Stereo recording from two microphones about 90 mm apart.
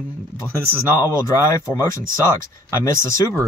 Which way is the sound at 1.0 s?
35° left (ahead or behind).